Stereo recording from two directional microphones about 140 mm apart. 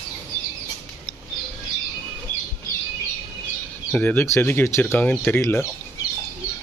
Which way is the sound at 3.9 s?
15° left (ahead or behind).